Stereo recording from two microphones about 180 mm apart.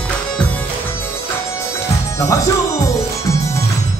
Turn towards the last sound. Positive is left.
turn(degrees=15)  # may be behind; listen again after turning